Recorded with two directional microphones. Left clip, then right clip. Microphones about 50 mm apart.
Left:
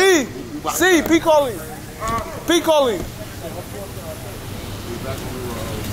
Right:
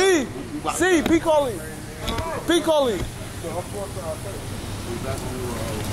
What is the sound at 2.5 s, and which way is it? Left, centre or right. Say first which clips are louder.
Speech: left 4 dB; centre.